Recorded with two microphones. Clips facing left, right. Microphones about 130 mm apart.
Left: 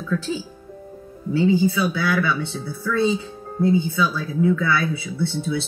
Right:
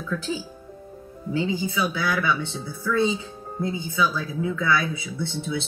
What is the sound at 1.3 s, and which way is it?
Speech, 15° right (ahead or behind).